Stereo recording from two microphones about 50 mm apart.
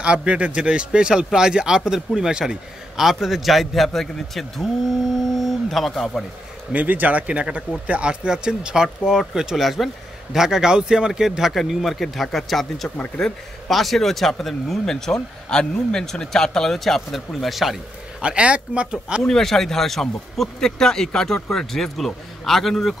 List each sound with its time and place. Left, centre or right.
0.0 s a man's voice: right; by 6.2 s centre
6.7 s a man's voice: right; by 17.7 s centre
18.2 s speech: right
19.2 s speech: centre